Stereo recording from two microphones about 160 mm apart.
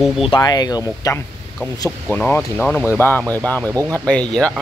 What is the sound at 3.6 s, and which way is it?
Speech, 20° right (ahead or behind).